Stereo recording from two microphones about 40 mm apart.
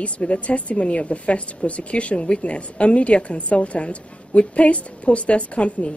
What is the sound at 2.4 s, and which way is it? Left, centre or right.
A woman's voice, left.